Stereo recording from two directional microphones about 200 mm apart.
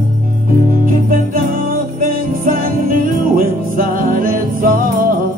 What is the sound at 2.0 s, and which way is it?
Music, 45° right (ahead or behind).